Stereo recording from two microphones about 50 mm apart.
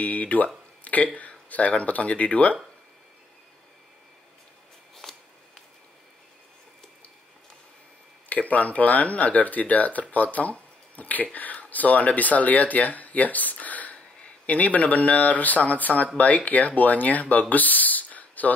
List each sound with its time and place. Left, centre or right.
0.0 s speech: left
4.9 s a sound: centre
8.3 s speech: left